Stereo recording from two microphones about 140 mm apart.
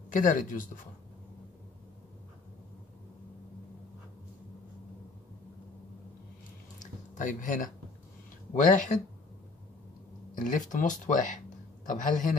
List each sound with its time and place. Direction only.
0.1 s a man's voice: 70° left (ahead or behind)
6.8 s a sound: 65° left (ahead or behind)
8.5 s speech: 65° left (ahead or behind)
10.3 s a man's voice: 65° left (ahead or behind)